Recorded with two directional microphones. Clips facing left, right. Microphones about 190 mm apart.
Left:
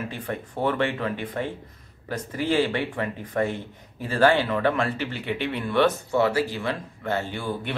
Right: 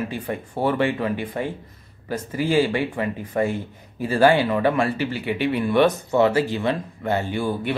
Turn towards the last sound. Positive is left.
turn(degrees=-10)  # may be behind; listen again after turning